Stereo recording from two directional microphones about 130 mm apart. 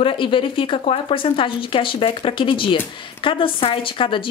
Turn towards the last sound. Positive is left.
turn(degrees=40)  # may be behind; listen again after turning